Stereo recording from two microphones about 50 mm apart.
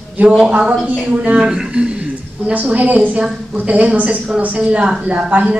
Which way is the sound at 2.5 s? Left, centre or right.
Right.